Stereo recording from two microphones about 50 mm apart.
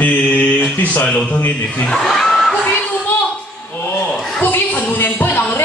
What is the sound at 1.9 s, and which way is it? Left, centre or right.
Snicker, centre.